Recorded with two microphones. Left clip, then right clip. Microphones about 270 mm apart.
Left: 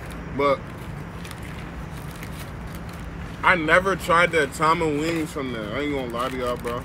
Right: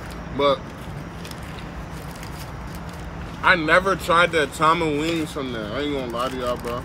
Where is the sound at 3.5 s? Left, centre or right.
Centre.